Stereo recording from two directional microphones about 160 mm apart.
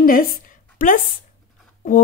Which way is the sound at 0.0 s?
65° left (ahead or behind).